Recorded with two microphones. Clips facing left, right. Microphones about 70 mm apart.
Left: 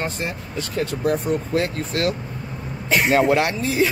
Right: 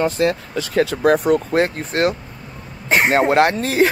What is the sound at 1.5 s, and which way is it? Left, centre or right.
Speech, right.